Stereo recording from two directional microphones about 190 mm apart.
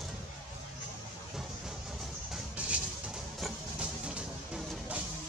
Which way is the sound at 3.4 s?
5° right (ahead or behind).